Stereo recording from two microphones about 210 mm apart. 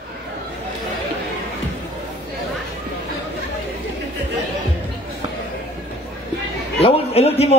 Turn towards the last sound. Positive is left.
turn(degrees=30)  # may be behind; listen again after turning